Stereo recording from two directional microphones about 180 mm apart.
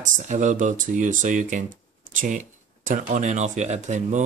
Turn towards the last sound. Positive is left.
turn(degrees=-40)  # may be behind; listen again after turning